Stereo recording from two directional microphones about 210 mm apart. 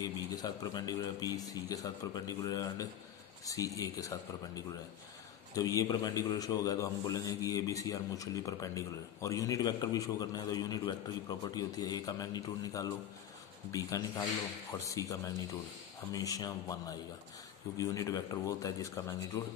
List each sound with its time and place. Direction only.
0.0 s a man's voice: 20° left (ahead or behind)
5.5 s a man's voice: 15° left (ahead or behind)